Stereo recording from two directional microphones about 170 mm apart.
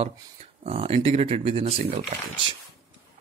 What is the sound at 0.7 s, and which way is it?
Speech, 35° right (ahead or behind).